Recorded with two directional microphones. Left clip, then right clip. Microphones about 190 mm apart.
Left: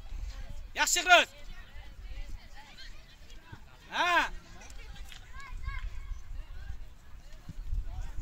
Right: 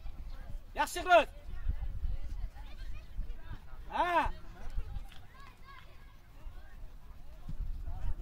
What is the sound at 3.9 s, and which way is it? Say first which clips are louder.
Speech: left 3 dB; 40° right (ahead or behind).